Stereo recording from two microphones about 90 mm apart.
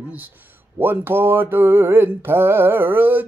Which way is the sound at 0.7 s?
25° right (ahead or behind).